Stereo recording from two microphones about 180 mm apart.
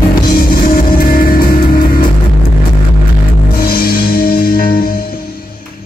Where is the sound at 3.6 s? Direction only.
55° left (ahead or behind).